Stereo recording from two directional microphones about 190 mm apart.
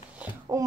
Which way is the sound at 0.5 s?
20° right (ahead or behind).